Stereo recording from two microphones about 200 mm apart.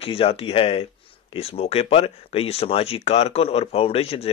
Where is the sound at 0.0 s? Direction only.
30° left (ahead or behind).